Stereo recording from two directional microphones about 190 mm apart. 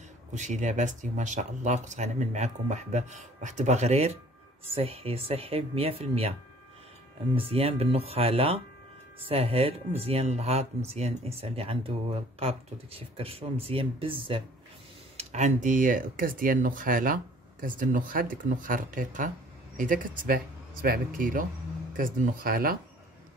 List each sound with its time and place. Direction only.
0.3 s speech: 40° right (ahead or behind)
7.3 s speech: 30° right (ahead or behind); by 22.8 s 50° right (ahead or behind)